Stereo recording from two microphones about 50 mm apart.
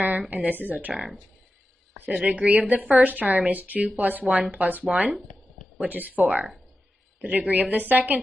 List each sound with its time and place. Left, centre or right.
0.3 s a woman's voice: right
0.9 s speech: centre
2.0 s a woman's voice: right